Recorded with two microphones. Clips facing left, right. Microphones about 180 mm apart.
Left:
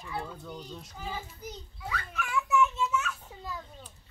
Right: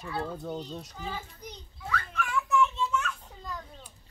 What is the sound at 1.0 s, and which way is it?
Children playing, 5° left (ahead or behind).